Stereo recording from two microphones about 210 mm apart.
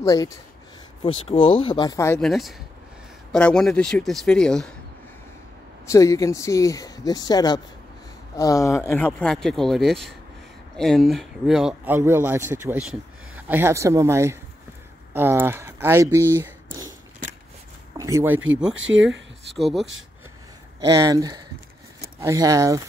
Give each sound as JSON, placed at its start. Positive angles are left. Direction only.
{"t": 0.0, "sound": "speech", "side_deg": 15}
{"t": 1.0, "sound": "speech", "side_deg": 25}
{"t": 2.1, "sound": "speech", "side_deg": 0}
{"t": 5.9, "sound": "speech", "side_deg": 15}
{"t": 17.9, "sound": "speech", "side_deg": -15}
{"t": 18.8, "sound": "speech", "side_deg": -65}
{"t": 19.5, "sound": "speech", "side_deg": 0}
{"t": 20.8, "sound": "speech", "side_deg": -15}